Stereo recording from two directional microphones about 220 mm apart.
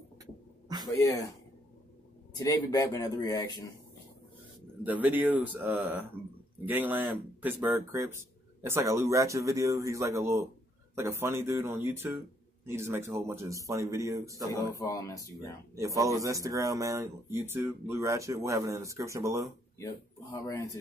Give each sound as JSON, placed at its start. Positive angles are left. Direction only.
{"t": 2.3, "sound": "speech", "side_deg": 15}
{"t": 4.8, "sound": "speech", "side_deg": -5}
{"t": 14.8, "sound": "speech", "side_deg": 15}
{"t": 15.7, "sound": "speech", "side_deg": -15}
{"t": 19.8, "sound": "speech", "side_deg": 15}